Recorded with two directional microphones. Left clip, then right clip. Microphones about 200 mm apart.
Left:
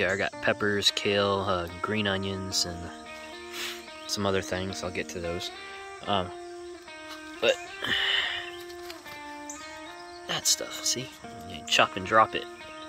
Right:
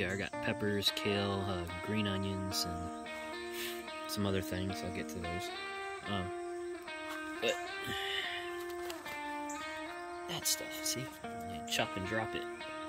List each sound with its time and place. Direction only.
0.0 s speech: 5° right (ahead or behind)
7.4 s speech: centre (ahead or behind)
10.2 s speech: 5° right (ahead or behind)